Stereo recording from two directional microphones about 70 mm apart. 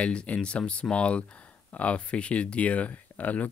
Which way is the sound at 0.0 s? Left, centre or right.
Centre.